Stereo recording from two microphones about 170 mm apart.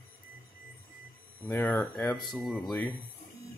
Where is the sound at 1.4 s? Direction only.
10° left (ahead or behind).